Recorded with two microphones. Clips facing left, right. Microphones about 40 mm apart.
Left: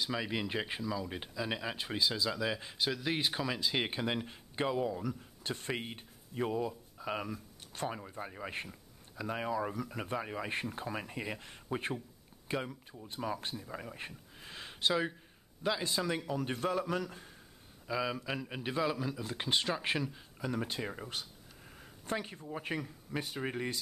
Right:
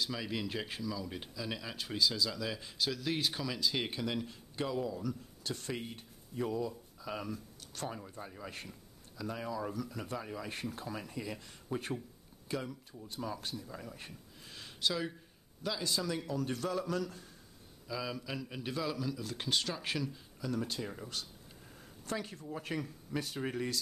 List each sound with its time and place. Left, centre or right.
0.0 s speech: left